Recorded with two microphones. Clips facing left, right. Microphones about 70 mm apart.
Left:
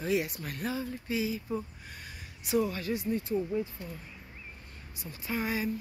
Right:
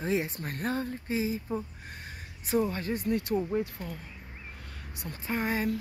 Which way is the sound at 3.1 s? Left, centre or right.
Right.